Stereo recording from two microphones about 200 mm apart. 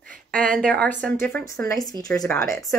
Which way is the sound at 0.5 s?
5° left (ahead or behind).